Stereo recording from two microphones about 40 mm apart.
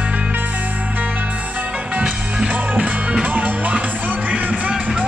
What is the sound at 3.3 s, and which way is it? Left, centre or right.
Music, right.